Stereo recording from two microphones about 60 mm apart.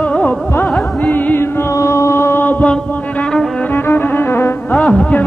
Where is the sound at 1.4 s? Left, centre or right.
Left.